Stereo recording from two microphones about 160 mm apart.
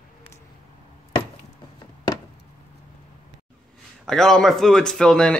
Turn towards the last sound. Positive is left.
turn(degrees=5)  # may be behind; listen again after turning